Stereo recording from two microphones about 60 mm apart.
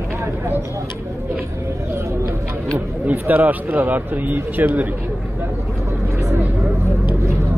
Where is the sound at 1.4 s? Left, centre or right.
Right.